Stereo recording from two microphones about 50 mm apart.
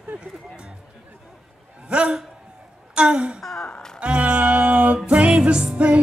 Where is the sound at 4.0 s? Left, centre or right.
Right.